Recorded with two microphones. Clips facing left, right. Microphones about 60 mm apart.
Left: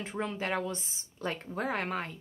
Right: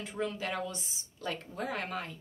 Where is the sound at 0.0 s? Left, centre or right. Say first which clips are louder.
Left 1 dB; left.